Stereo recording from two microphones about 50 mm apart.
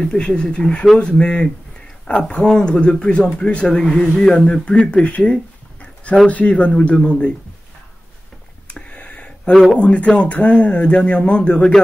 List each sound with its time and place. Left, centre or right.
0.0 s speech: centre
4.5 s speech: left
8.6 s a sound: left
9.8 s speech: left